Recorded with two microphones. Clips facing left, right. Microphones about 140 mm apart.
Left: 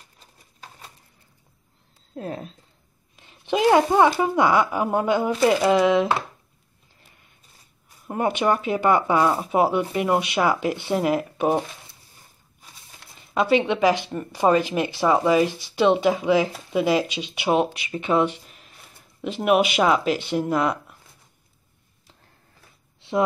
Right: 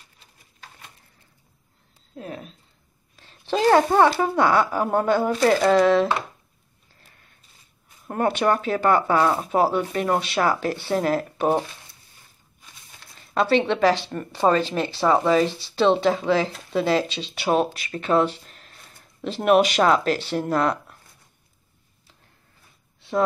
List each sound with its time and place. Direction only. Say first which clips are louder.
2.1 s speech: left 4 dB; 35° left (ahead or behind)
3.2 s speech: left 1 dB; 15° left (ahead or behind)
8.1 s speech: right 1 dB; 10° left (ahead or behind)
13.3 s speech: even; 10° left (ahead or behind)